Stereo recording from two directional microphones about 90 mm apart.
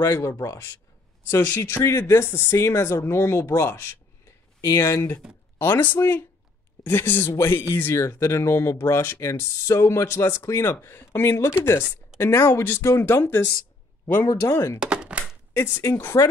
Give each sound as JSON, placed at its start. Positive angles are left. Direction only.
{"t": 0.0, "sound": "speech", "side_deg": 35}
{"t": 14.8, "sound": "chopping", "side_deg": -10}
{"t": 15.5, "sound": "speech", "side_deg": 30}